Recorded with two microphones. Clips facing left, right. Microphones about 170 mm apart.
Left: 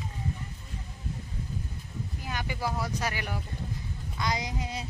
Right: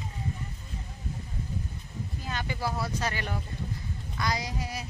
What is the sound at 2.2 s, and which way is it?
Speech, 15° left (ahead or behind).